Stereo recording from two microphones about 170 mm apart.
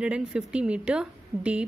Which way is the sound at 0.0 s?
5° right (ahead or behind).